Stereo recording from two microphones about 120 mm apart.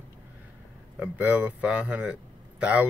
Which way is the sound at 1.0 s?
10° right (ahead or behind).